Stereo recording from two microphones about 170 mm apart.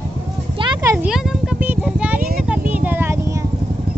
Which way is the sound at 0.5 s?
25° right (ahead or behind).